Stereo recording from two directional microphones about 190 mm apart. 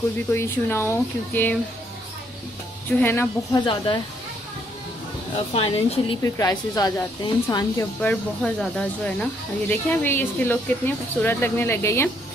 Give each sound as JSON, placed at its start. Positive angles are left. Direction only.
{"t": 0.3, "sound": "a woman's voice", "side_deg": 10}
{"t": 3.0, "sound": "a woman's voice", "side_deg": 10}
{"t": 3.6, "sound": "speech", "side_deg": 25}
{"t": 5.5, "sound": "speech", "side_deg": 30}
{"t": 6.2, "sound": "a woman's voice", "side_deg": 15}